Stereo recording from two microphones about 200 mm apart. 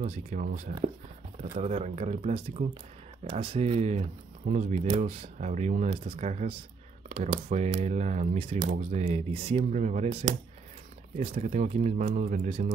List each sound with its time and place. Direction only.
0.0 s speech: 35° right (ahead or behind)
10.2 s speech: 25° right (ahead or behind)
11.1 s speech: 35° right (ahead or behind)